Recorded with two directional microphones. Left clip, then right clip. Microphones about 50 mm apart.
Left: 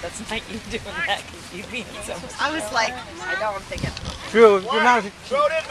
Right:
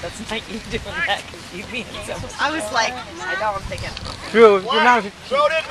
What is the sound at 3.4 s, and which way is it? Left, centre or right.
Speech, right.